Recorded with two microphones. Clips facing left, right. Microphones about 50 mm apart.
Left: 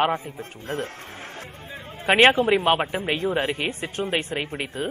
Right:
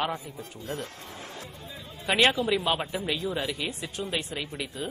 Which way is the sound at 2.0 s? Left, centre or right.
Left.